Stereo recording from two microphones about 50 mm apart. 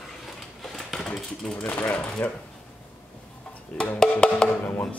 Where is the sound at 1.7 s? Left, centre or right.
Left.